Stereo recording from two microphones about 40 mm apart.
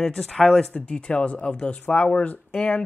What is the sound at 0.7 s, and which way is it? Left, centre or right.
Speech, left.